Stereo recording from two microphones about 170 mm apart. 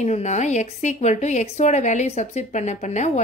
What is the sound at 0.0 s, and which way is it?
A woman's voice, 40° left (ahead or behind).